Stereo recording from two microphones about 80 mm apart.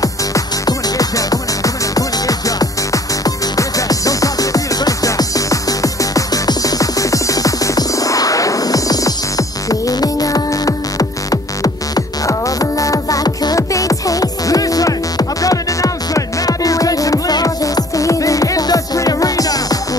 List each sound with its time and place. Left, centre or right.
0.0 s music: left